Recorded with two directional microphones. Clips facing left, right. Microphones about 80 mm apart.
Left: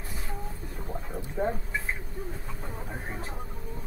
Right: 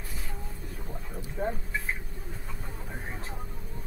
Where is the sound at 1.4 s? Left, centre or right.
Left.